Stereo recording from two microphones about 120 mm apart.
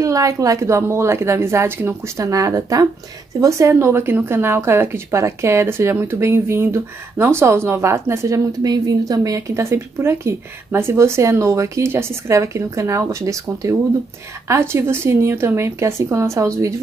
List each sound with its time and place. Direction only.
0.0 s speech: 30° right (ahead or behind)